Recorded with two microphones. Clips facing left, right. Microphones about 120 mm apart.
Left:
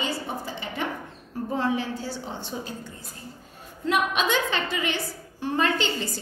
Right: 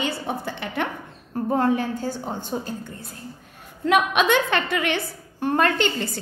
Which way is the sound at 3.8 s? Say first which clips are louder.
Right 5 dB; 65° right (ahead or behind).